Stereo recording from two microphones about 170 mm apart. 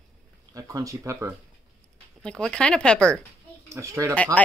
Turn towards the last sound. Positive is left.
turn(degrees=-15)  # may be behind; listen again after turning